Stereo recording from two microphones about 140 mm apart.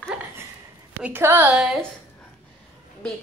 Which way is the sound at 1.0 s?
15° right (ahead or behind).